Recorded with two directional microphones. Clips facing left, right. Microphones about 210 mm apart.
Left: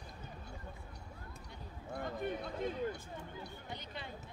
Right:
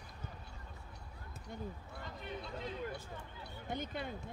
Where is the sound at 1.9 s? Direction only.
50° left (ahead or behind).